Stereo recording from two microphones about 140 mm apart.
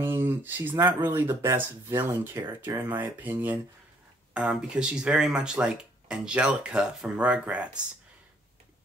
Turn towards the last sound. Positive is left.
turn(degrees=-10)  # may be behind; listen again after turning